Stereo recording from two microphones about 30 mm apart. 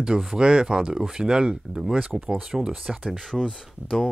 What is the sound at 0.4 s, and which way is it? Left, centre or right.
Speech, right.